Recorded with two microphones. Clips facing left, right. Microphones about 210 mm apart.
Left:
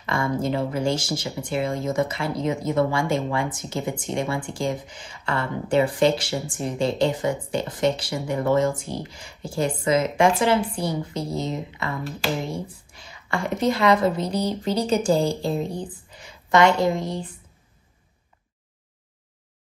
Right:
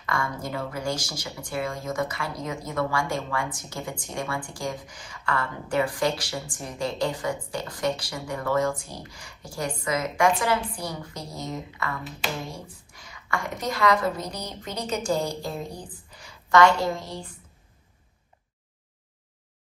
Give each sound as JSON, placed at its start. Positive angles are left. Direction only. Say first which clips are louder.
{"t": 0.0, "sound": "a woman's voice", "louder": "left 6 dB", "side_deg": 25}